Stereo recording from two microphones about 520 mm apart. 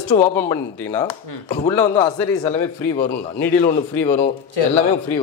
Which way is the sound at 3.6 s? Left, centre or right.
Centre.